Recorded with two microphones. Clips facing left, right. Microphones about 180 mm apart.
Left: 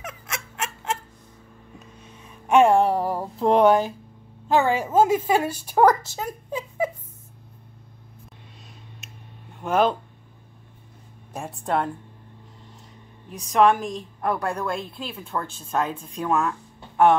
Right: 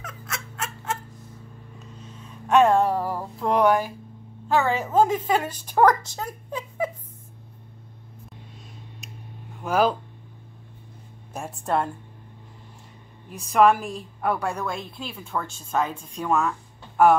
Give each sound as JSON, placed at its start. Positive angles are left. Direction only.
{"t": 2.4, "sound": "music", "side_deg": 10}
{"t": 4.5, "sound": "a woman's voice", "side_deg": 15}
{"t": 9.6, "sound": "speech", "side_deg": 0}
{"t": 11.3, "sound": "a woman's voice", "side_deg": 0}
{"t": 13.3, "sound": "a woman's voice", "side_deg": -5}